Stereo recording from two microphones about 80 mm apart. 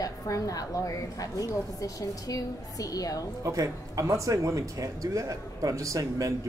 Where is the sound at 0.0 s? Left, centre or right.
Left.